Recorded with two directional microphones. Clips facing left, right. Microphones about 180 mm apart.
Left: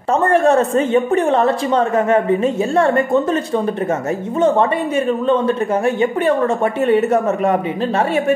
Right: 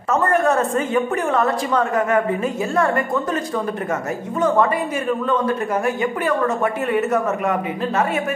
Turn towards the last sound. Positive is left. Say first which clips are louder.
# left 4 dB
turn(degrees=30)  # may be behind; listen again after turning